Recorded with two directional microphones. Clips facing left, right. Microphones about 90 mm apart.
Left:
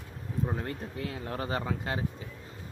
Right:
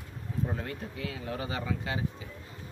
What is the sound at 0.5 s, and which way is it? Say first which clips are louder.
Speech: left 2 dB; 35° left (ahead or behind).